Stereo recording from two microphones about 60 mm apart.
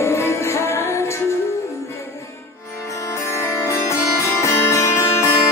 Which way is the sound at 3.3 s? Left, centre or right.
Left.